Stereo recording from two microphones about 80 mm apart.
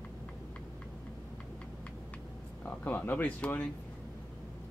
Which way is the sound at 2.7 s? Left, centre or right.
Centre.